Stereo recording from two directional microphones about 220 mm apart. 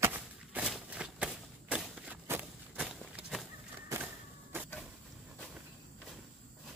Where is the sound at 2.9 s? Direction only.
Centre (ahead or behind).